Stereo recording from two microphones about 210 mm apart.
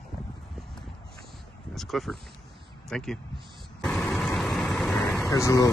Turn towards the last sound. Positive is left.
turn(degrees=15)  # may be behind; listen again after turning